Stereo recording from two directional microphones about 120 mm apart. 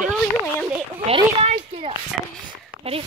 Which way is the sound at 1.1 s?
55° right (ahead or behind).